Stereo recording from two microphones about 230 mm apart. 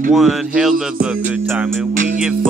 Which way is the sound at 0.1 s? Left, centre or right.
Centre.